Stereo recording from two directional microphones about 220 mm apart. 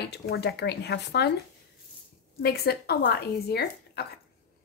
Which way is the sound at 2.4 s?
45° left (ahead or behind).